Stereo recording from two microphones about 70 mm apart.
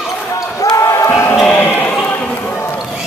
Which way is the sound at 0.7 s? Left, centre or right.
Left.